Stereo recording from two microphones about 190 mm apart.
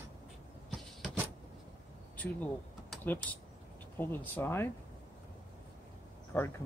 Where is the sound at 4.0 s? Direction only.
10° left (ahead or behind).